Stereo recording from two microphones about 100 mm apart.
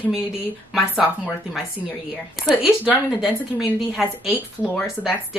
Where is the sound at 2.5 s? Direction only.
Centre (ahead or behind).